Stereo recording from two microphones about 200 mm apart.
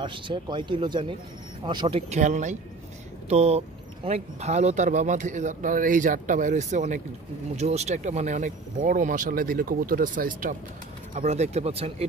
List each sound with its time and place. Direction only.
0.0 s speech: 25° right (ahead or behind)